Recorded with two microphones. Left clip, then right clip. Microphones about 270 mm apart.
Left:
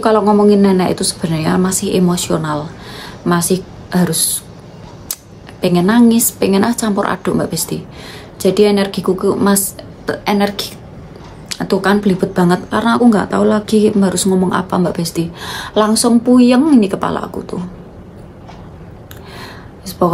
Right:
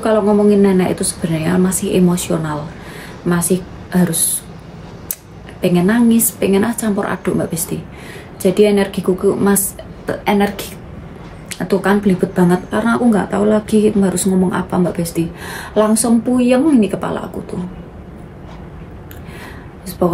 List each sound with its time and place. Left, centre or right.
0.0 s a woman's voice: centre
5.6 s speech: centre
11.5 s speech: centre